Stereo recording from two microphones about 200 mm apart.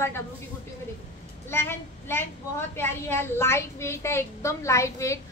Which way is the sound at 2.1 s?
10° left (ahead or behind).